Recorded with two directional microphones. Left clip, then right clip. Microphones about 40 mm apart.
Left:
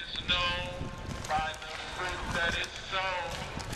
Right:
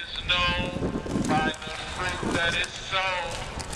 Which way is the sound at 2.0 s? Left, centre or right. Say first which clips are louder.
Right 5 dB; right.